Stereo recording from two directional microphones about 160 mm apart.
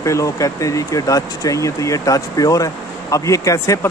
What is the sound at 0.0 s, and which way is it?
Speech, 20° left (ahead or behind).